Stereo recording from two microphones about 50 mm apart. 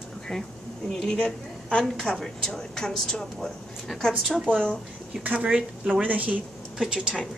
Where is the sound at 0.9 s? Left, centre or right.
Centre.